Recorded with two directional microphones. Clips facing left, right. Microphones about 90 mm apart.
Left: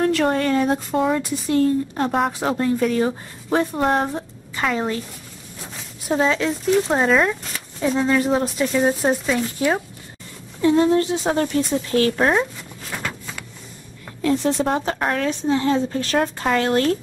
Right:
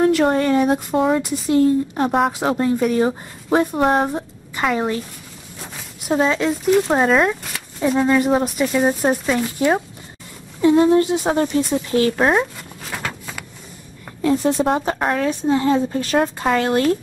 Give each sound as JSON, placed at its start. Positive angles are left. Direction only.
{"t": 0.0, "sound": "speech", "side_deg": -15}
{"t": 2.1, "sound": "speech", "side_deg": -5}
{"t": 2.5, "sound": "speech", "side_deg": -15}
{"t": 6.0, "sound": "speech", "side_deg": -5}
{"t": 10.6, "sound": "speech", "side_deg": -20}
{"t": 14.2, "sound": "speech", "side_deg": -10}
{"t": 15.5, "sound": "speech", "side_deg": -20}